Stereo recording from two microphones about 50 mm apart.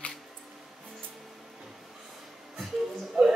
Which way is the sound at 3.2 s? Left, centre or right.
Centre.